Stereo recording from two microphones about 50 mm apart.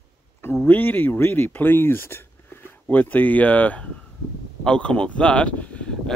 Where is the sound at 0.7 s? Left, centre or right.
Left.